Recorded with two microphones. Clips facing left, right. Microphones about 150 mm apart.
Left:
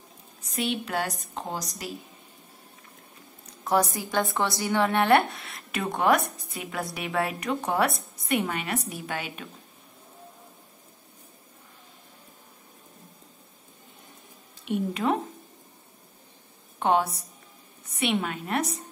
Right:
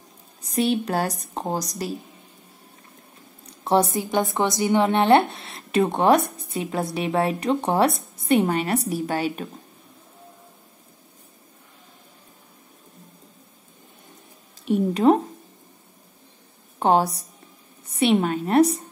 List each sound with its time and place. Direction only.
0.5 s a woman's voice: 35° right (ahead or behind)
3.6 s a woman's voice: 25° right (ahead or behind)
14.6 s a sound: 40° right (ahead or behind)
16.8 s a woman's voice: 35° right (ahead or behind)